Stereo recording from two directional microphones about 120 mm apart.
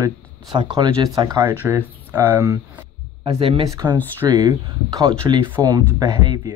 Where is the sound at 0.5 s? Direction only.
40° right (ahead or behind).